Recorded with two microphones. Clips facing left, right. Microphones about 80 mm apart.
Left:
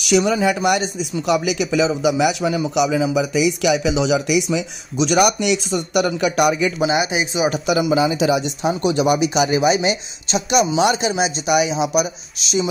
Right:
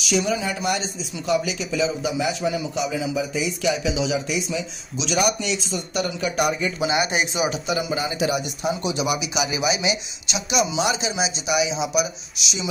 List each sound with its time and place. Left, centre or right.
0.0 s speech: left
7.0 s speech: centre
7.4 s speech: left
7.7 s speech: left
8.9 s speech: left